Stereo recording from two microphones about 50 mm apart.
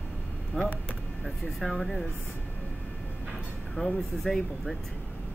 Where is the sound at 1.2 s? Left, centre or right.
Centre.